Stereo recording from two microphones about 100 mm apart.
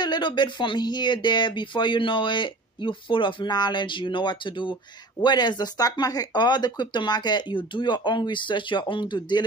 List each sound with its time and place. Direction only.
0.0 s speech: 50° left (ahead or behind)